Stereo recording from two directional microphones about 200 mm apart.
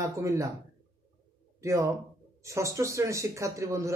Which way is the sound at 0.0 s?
15° right (ahead or behind).